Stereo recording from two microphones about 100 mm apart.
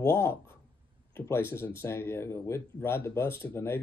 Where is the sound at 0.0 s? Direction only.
25° left (ahead or behind).